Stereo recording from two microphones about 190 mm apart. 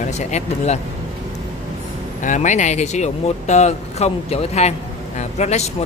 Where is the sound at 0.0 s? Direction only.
35° left (ahead or behind).